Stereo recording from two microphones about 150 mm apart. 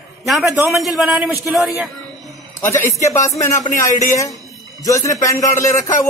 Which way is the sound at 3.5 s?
60° left (ahead or behind).